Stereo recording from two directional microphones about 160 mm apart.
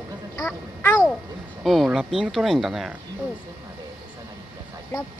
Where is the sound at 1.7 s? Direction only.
Centre (ahead or behind).